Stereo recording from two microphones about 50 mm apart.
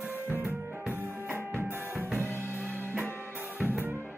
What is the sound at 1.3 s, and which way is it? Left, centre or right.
Music, right.